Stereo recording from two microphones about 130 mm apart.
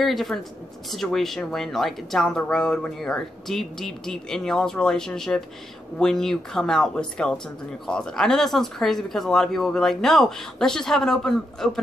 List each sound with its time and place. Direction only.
0.0 s speech: centre (ahead or behind)